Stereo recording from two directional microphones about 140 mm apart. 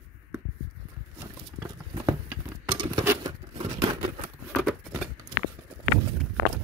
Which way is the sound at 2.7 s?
35° right (ahead or behind).